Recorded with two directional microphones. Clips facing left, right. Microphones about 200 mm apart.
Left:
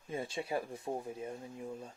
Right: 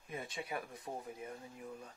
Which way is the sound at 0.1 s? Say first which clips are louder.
Left 6 dB; 30° left (ahead or behind).